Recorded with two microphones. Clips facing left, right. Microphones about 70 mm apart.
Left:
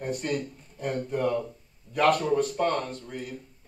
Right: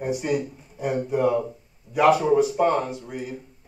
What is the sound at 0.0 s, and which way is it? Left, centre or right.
A woman's voice, centre.